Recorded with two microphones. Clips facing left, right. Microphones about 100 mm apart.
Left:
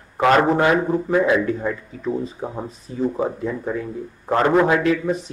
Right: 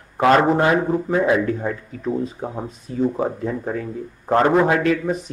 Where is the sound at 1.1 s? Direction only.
45° right (ahead or behind).